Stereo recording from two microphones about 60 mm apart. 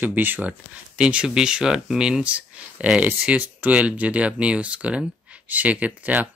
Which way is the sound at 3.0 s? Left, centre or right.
Right.